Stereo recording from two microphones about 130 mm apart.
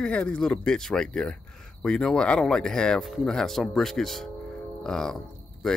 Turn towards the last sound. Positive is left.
turn(degrees=5)  # may be behind; listen again after turning